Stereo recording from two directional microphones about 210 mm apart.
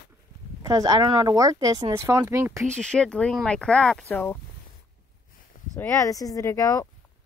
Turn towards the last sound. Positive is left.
turn(degrees=15)  # may be behind; listen again after turning